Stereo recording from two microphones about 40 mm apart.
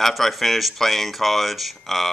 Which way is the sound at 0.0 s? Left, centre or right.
Centre.